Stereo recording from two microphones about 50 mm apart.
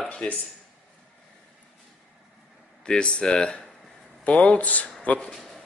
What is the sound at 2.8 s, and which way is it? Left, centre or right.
Speech, centre.